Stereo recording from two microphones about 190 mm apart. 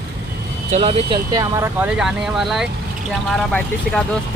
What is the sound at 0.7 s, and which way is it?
Speech, 35° right (ahead or behind).